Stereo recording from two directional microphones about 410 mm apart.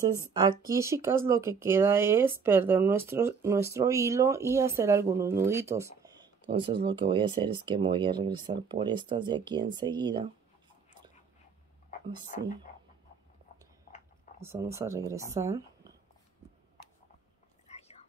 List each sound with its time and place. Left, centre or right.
0.3 s speech: centre
12.3 s speech: centre
14.4 s speech: centre
17.6 s whispering: centre